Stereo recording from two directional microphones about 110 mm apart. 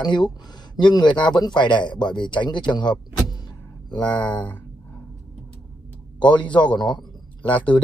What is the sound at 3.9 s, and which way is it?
Speech, 10° left (ahead or behind).